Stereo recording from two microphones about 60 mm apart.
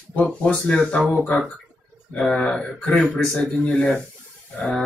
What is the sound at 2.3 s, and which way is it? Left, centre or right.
Speech, centre.